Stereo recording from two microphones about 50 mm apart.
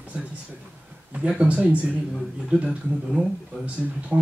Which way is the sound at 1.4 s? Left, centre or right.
Right.